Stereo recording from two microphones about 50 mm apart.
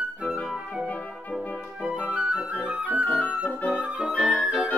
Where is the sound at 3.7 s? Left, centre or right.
Right.